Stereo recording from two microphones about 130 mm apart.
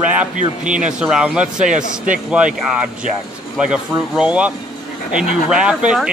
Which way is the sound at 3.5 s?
5° right (ahead or behind).